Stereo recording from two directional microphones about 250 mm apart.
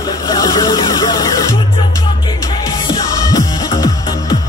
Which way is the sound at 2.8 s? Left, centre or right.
Centre.